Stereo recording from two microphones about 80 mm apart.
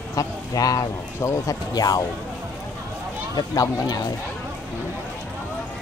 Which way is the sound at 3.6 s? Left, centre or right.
Left.